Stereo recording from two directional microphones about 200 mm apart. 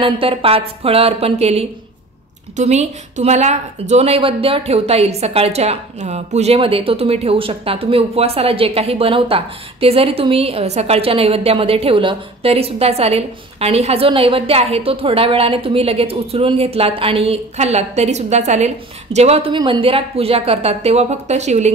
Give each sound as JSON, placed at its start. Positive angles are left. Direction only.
{"t": 0.0, "sound": "a woman's voice", "side_deg": -25}